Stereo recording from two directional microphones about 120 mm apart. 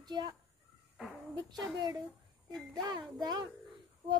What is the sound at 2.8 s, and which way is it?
Speech, 35° right (ahead or behind).